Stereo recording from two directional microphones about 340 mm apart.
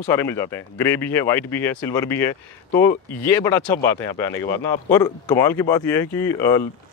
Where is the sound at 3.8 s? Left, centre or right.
Centre.